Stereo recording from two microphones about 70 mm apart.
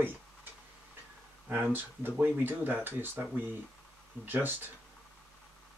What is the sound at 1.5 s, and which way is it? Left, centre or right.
Speech, right.